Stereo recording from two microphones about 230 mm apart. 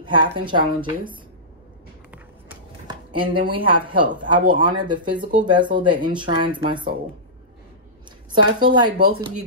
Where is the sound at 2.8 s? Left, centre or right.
Right.